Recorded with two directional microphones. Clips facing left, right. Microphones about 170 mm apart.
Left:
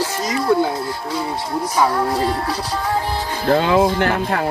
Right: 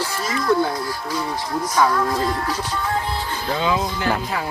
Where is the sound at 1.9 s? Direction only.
30° left (ahead or behind).